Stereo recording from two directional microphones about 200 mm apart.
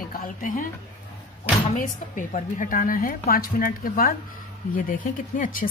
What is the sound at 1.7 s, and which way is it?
Speech, 40° left (ahead or behind).